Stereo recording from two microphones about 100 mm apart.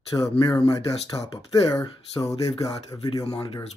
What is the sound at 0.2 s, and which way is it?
Speech, 30° left (ahead or behind).